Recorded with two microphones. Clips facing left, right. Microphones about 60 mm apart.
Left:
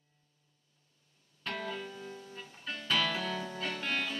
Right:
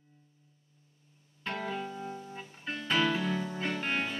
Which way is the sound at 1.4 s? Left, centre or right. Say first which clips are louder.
Right 3 dB; right.